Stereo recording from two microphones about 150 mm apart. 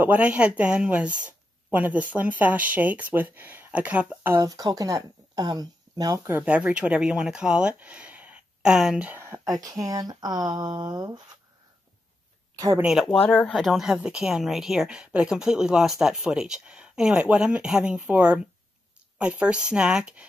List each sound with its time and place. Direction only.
0.0 s speech: 10° right (ahead or behind); by 11.3 s 25° right (ahead or behind)
12.5 s speech: 20° right (ahead or behind)
12.8 s speech: centre (ahead or behind)